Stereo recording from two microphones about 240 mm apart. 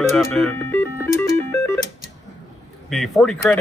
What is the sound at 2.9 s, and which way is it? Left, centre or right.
Speech, centre.